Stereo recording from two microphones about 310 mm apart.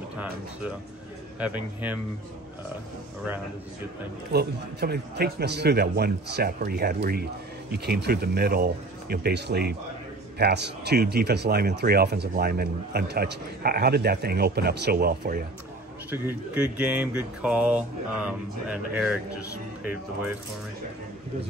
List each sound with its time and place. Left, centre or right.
1.4 s speech: centre
4.3 s speech: right
16.1 s speech: centre